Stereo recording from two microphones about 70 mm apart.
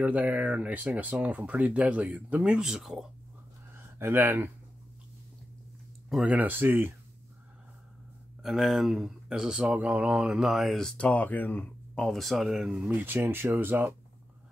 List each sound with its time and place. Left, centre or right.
0.0 s speech: right
2.1 s mantra: centre
4.0 s speech: right
6.0 s speech: centre
6.3 s speech: right
8.4 s speech: centre
9.8 s mantra: centre
10.8 s speech: centre
11.1 s speech: left
12.0 s speech: centre
12.8 s speech: right